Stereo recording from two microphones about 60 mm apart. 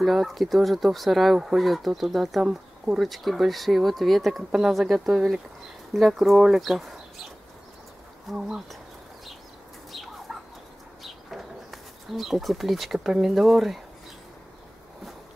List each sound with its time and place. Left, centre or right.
0.0 s speech: centre
8.3 s speech: centre
9.9 s bird: centre